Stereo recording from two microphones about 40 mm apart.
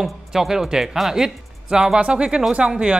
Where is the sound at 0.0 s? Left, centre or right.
Centre.